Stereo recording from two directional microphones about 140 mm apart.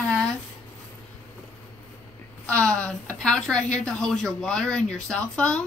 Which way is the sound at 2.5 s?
5° left (ahead or behind).